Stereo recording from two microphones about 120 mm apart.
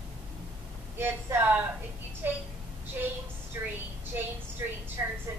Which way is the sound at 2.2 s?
15° right (ahead or behind).